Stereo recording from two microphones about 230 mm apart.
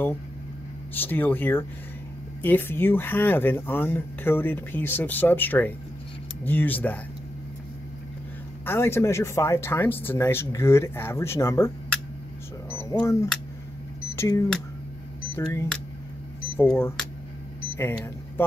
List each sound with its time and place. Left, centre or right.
0.9 s speech: centre
8.6 s speech: centre